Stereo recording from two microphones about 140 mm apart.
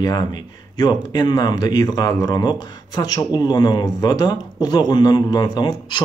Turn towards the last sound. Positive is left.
turn(degrees=30)  # may be behind; listen again after turning